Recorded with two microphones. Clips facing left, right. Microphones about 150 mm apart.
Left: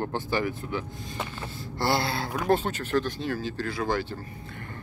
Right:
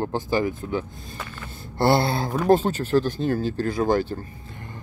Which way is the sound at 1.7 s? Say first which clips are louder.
Right 7 dB; 55° right (ahead or behind).